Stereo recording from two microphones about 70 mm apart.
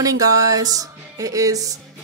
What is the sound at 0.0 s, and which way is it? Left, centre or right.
Music, right.